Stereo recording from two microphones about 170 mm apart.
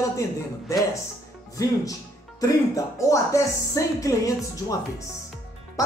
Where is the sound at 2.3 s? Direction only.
20° left (ahead or behind).